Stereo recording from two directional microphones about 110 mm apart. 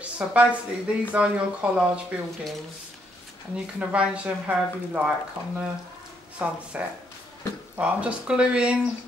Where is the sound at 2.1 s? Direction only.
10° right (ahead or behind).